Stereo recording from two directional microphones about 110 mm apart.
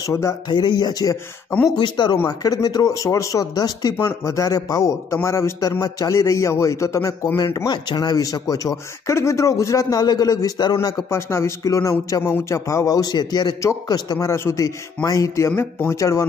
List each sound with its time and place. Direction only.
0.0 s a man's voice: 30° left (ahead or behind)
0.5 s speech: 40° left (ahead or behind)
2.1 s a man's voice: 30° left (ahead or behind)
7.5 s speech: 40° left (ahead or behind)
11.1 s a man's voice: 25° left (ahead or behind)